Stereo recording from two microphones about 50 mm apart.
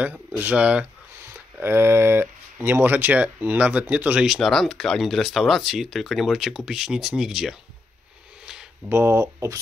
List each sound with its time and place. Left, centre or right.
0.0 s speech: right
1.6 s speech: right
4.4 s speech: centre
8.8 s speech: right